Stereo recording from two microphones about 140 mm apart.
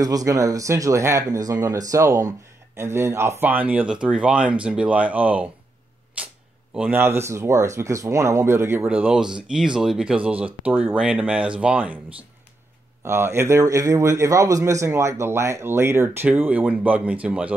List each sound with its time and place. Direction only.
0.0 s speech: 25° right (ahead or behind); by 12.0 s 10° right (ahead or behind)
13.0 s speech: 20° right (ahead or behind)